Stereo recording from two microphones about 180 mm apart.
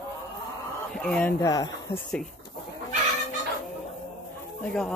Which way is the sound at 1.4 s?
20° left (ahead or behind).